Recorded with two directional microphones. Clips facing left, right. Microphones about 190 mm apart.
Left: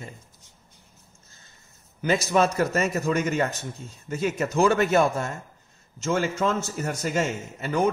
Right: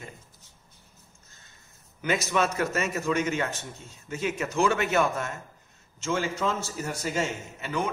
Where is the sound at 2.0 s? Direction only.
35° left (ahead or behind).